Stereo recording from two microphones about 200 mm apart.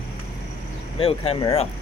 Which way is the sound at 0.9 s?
30° left (ahead or behind).